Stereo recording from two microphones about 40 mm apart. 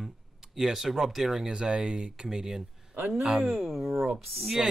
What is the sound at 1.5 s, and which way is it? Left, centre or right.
Speech, centre.